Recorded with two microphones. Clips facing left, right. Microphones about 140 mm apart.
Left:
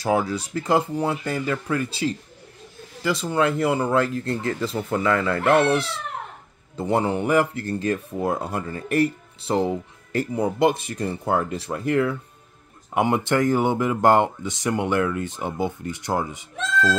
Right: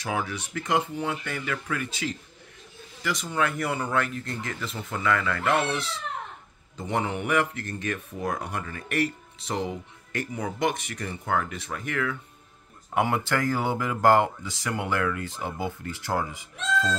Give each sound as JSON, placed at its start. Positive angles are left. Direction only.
{"t": 0.0, "sound": "speech", "side_deg": 35}
{"t": 6.8, "sound": "speech", "side_deg": 35}
{"t": 12.9, "sound": "speech", "side_deg": 20}